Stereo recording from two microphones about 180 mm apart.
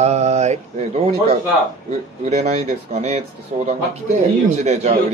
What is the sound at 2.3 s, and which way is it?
A man's voice, 40° right (ahead or behind).